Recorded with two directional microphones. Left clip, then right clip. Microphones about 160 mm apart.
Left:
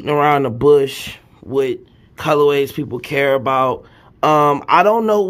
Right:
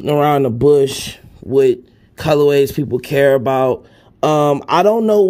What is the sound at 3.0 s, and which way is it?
Speech, 45° right (ahead or behind).